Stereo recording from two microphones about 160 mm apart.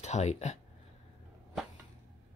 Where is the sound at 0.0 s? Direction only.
45° left (ahead or behind).